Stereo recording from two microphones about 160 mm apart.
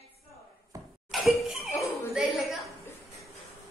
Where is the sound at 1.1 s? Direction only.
Centre (ahead or behind).